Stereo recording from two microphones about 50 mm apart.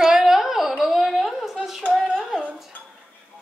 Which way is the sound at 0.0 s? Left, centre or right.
Centre.